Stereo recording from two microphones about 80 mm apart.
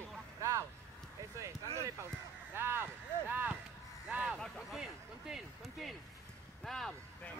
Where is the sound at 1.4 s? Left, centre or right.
Right.